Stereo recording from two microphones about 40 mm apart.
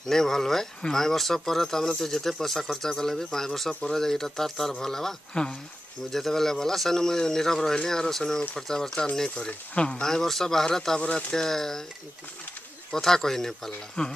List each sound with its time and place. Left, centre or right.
0.0 s speech: centre
5.3 s speech: left
6.1 s speech: centre
11.0 s speech: left
11.3 s speech: centre
12.9 s speech: centre